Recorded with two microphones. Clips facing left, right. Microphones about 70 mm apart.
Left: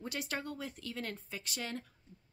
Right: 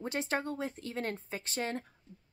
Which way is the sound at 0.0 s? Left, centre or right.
Right.